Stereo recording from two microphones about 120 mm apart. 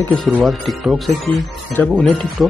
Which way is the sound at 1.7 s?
10° left (ahead or behind).